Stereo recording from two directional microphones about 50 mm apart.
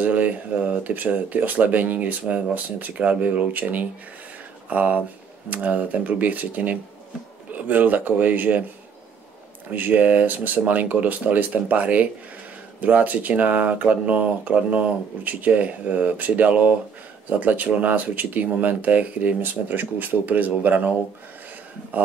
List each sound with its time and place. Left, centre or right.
0.0 s speech: right
9.7 s speech: right